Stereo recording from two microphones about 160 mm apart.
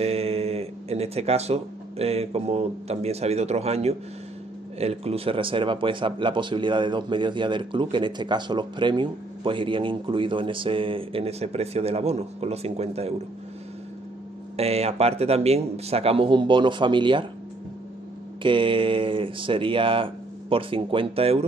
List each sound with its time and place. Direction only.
0.0 s speech: 40° right (ahead or behind)
14.6 s speech: 40° right (ahead or behind)
18.4 s speech: 30° right (ahead or behind)